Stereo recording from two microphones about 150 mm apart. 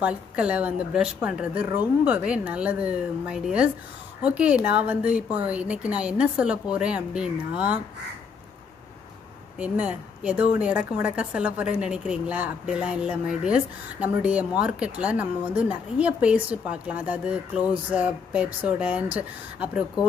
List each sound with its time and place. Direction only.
0.0 s a woman's voice: 10° right (ahead or behind)
9.6 s a woman's voice: 10° right (ahead or behind)